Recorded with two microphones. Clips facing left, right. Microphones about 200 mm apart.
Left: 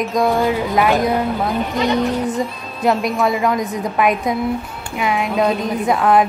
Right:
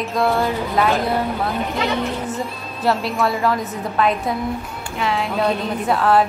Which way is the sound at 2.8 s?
15° left (ahead or behind).